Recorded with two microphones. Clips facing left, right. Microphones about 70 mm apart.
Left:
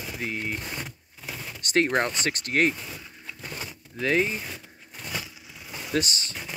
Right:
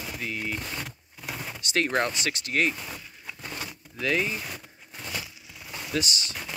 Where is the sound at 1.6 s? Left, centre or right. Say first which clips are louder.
Left 4 dB; left.